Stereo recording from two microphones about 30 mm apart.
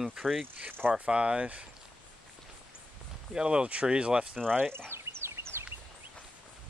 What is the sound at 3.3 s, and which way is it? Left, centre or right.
Speech, right.